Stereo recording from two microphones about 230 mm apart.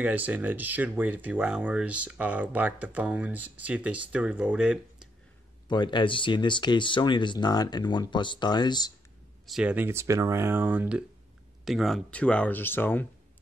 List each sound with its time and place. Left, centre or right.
0.0 s speech: centre
5.7 s speech: centre
9.5 s speech: centre